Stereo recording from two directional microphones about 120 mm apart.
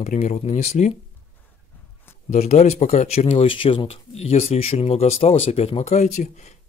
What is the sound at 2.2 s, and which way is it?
Speech, 70° left (ahead or behind).